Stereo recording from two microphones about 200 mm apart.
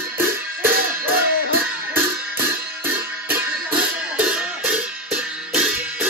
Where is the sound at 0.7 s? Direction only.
50° right (ahead or behind).